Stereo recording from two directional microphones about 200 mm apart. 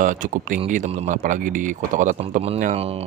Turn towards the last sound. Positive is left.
turn(degrees=-30)  # may be behind; listen again after turning